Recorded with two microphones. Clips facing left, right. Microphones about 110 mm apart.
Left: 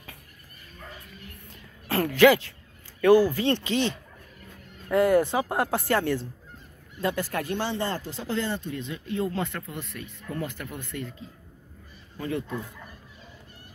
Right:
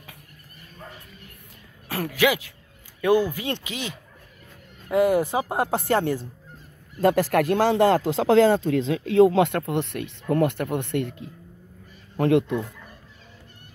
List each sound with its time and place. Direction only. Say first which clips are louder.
1.9 s speech: left 4 dB; 10° right (ahead or behind)
7.2 s speech: right 9 dB; 80° right